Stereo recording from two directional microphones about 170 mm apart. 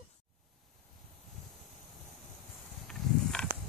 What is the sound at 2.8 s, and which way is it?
Wild animals, 5° left (ahead or behind).